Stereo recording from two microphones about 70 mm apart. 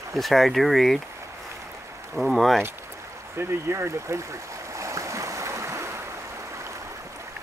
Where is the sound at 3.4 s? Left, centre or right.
Right.